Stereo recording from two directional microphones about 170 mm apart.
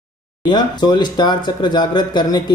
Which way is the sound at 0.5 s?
25° left (ahead or behind).